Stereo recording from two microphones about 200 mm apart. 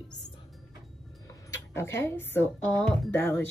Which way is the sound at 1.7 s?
15° left (ahead or behind).